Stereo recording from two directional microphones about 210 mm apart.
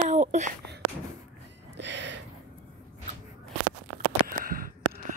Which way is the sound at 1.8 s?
55° right (ahead or behind).